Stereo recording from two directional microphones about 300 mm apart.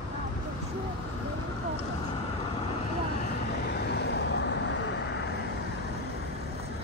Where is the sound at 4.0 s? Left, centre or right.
Left.